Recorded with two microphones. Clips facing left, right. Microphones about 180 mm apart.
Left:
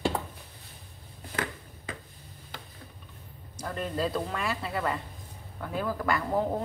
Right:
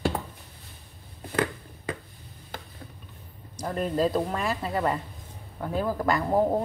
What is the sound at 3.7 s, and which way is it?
Speech, 40° right (ahead or behind).